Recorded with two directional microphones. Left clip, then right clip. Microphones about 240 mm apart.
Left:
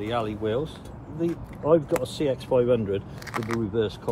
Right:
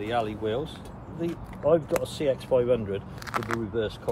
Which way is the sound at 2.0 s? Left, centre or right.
Left.